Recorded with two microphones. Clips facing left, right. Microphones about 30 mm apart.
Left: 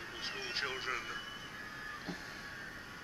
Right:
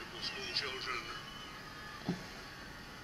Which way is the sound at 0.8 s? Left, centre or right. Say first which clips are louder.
Left 2 dB; right.